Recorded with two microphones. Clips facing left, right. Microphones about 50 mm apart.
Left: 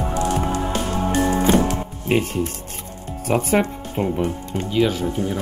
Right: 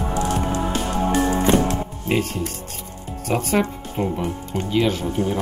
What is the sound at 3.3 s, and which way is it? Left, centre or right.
Speech, centre.